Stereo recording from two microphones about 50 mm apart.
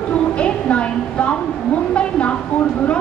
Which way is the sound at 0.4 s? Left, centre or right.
Left.